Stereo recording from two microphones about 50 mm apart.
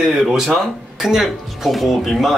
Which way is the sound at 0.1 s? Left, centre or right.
Centre.